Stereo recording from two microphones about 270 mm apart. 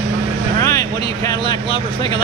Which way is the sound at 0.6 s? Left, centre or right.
Centre.